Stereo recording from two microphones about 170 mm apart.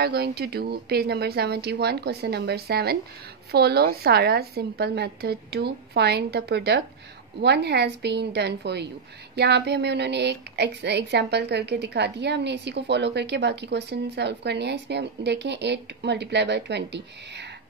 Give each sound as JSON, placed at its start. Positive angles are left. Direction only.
{"t": 0.0, "sound": "a woman's voice", "side_deg": -70}